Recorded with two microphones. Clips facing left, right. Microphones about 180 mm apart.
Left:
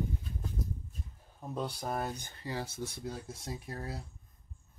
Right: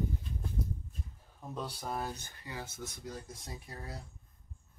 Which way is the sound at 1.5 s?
10° left (ahead or behind).